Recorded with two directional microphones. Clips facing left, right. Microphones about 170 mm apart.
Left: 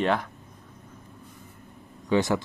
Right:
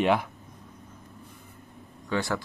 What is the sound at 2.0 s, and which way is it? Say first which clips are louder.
Speech: left 6 dB; 20° left (ahead or behind).